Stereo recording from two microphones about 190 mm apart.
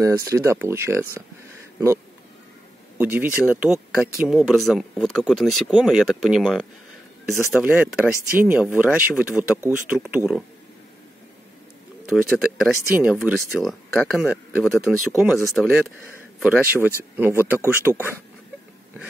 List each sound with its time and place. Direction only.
0.0 s speech: 15° right (ahead or behind)
3.0 s speech: 10° right (ahead or behind)
12.1 s speech: centre (ahead or behind)